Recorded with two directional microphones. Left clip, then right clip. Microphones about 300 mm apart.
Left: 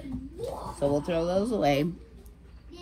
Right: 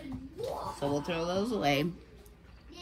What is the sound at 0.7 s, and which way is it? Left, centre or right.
Speech, centre.